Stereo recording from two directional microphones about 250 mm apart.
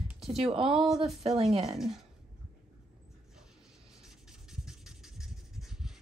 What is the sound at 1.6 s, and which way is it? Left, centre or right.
Speech, centre.